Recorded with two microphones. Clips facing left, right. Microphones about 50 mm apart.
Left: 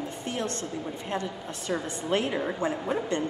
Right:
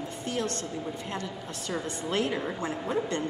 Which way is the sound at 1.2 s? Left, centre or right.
Left.